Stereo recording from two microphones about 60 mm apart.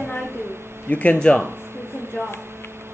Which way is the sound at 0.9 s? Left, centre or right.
Left.